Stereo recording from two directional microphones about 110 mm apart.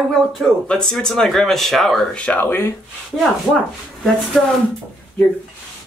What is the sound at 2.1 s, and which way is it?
Speech, 10° left (ahead or behind).